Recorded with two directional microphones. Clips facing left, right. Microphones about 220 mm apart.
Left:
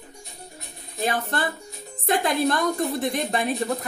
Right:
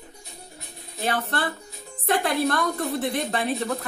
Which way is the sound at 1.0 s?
15° left (ahead or behind).